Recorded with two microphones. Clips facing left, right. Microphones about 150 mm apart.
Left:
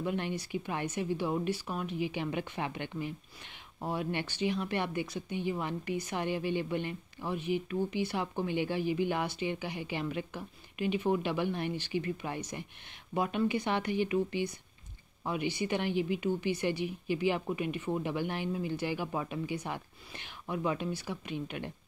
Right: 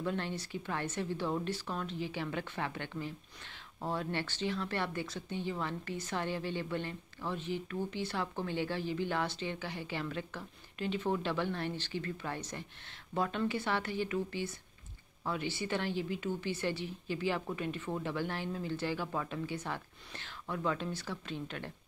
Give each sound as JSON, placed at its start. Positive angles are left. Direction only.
{"t": 0.0, "sound": "speech", "side_deg": 15}